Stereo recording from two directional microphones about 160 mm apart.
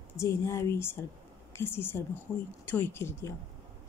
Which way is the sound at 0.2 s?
15° left (ahead or behind).